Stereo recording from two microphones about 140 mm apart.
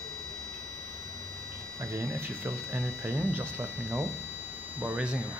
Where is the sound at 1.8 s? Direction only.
20° right (ahead or behind).